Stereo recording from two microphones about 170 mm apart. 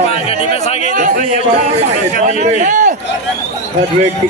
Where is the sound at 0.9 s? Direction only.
60° right (ahead or behind).